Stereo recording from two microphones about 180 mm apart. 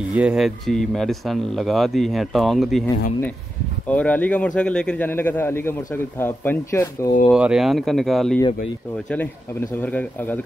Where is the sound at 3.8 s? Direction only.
10° left (ahead or behind).